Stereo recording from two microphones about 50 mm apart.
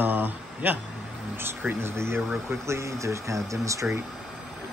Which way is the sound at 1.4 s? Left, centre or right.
Right.